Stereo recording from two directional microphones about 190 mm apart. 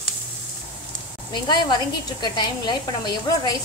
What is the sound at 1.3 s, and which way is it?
A woman's voice, 25° left (ahead or behind).